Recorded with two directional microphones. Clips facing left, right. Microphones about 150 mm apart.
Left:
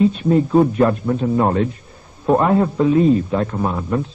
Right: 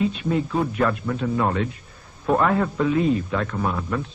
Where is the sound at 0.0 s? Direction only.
40° left (ahead or behind).